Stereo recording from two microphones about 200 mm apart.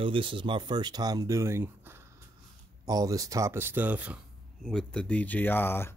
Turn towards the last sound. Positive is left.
turn(degrees=10)  # may be behind; listen again after turning